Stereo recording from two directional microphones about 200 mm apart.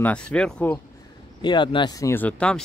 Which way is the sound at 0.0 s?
5° left (ahead or behind).